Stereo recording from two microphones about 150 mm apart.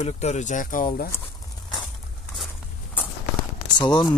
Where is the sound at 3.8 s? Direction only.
30° left (ahead or behind).